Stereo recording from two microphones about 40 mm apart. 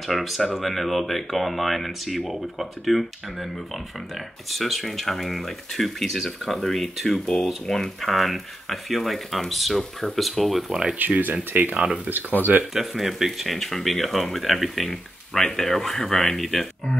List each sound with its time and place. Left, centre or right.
0.0 s speech: centre
10.7 s speech: centre
11.1 s speech: right
12.7 s speech: centre
14.9 s speech: centre
16.0 s speech: centre
16.3 s speech: centre